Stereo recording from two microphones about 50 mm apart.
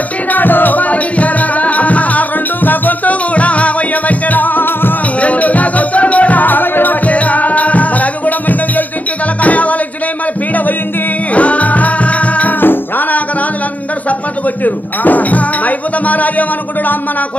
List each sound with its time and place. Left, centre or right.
0.3 s music: left
5.2 s music: left
11.3 s music: left
12.5 s music: left
14.6 s music: left